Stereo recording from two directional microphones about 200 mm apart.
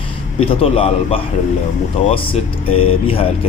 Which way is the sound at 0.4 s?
30° left (ahead or behind).